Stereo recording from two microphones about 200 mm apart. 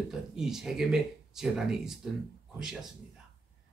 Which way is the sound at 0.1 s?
Centre (ahead or behind).